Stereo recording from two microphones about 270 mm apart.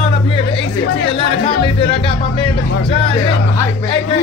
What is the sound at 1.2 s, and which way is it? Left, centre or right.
Speech, centre.